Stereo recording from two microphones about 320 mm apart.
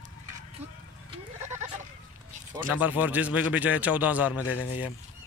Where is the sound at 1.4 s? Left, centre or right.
Right.